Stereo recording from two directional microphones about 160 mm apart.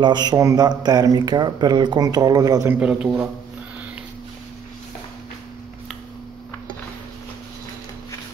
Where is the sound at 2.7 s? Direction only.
5° right (ahead or behind).